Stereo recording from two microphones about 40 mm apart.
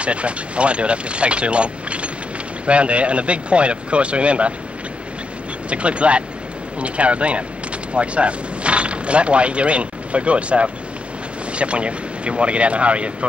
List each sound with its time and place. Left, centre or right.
0.0 s speech: right
5.7 s speech: right